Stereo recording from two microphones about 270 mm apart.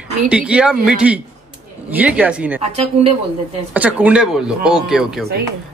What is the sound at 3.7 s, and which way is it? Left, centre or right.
Speech, centre.